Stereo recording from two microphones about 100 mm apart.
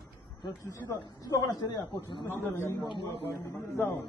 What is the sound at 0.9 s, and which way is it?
A man's voice, 45° left (ahead or behind).